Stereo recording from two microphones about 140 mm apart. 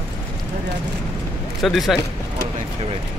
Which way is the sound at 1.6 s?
Centre (ahead or behind).